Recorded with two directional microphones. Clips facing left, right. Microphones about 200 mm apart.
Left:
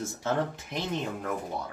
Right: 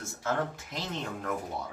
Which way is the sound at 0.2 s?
20° left (ahead or behind).